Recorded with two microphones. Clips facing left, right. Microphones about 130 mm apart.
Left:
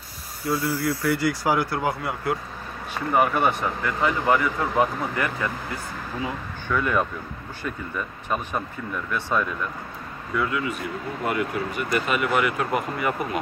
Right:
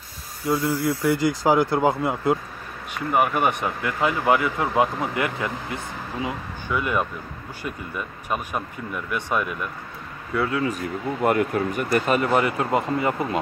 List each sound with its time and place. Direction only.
0.5 s speech: 20° right (ahead or behind)
3.1 s speech: 10° right (ahead or behind)
8.3 s speech: 10° right (ahead or behind)
10.3 s speech: 30° right (ahead or behind)
11.2 s speech: 45° right (ahead or behind); by 13.4 s 25° right (ahead or behind)